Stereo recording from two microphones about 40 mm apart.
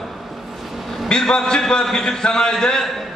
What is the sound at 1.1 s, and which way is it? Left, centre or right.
A man's voice, centre.